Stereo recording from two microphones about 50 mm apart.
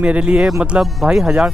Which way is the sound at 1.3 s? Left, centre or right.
Centre.